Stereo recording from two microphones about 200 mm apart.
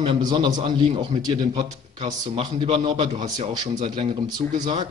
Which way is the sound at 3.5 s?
20° right (ahead or behind).